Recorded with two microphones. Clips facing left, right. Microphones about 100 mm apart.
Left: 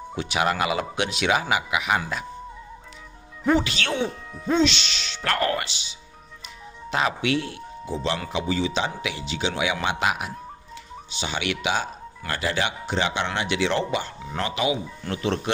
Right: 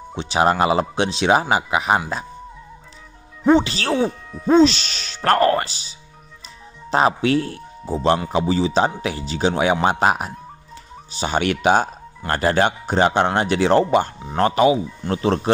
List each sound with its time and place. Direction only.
0.1 s speech: 30° right (ahead or behind)
3.4 s speech: 30° right (ahead or behind)